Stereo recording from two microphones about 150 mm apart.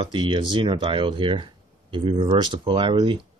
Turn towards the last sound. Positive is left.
turn(degrees=-30)  # may be behind; listen again after turning